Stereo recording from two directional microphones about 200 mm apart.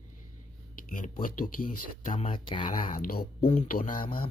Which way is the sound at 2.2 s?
25° left (ahead or behind).